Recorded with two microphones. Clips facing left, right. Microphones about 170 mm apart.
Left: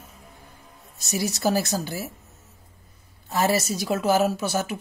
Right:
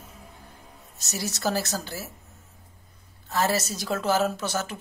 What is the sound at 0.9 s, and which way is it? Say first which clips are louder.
Speech: left 6 dB; 10° left (ahead or behind).